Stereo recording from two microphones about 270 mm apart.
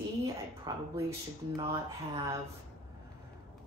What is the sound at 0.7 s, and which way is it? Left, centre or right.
A woman's voice, centre.